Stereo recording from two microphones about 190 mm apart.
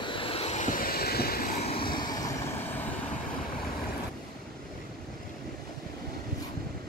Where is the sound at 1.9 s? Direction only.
20° left (ahead or behind).